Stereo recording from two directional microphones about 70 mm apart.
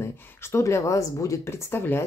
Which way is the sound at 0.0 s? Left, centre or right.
Left.